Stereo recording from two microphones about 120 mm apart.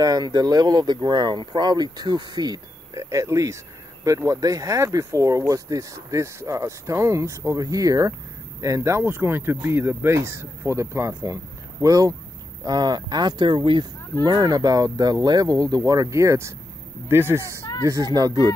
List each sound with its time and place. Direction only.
0.0 s speech: 35° right (ahead or behind)
14.2 s speech: 30° right (ahead or behind)